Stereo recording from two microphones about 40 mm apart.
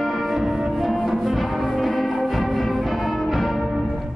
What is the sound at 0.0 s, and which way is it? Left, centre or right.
Music, centre.